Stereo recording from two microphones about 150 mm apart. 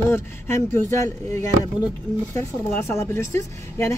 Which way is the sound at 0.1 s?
15° left (ahead or behind).